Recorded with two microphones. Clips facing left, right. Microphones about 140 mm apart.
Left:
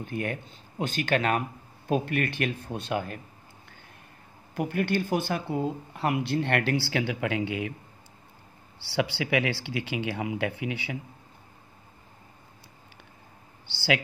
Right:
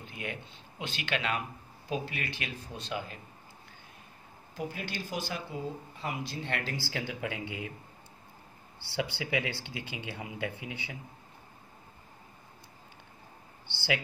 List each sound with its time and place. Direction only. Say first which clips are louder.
0.0 s speech: left 8 dB; 50° left (ahead or behind)
4.6 s speech: left 10 dB; 60° left (ahead or behind); by 7.7 s 75° left (ahead or behind)
8.7 s speech: left 6 dB; 80° left
13.7 s speech: left 5 dB; 90° left